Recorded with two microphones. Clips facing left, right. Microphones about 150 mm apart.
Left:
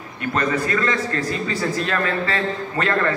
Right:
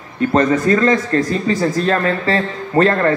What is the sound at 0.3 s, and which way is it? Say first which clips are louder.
Speech: right 7 dB; 35° right (ahead or behind).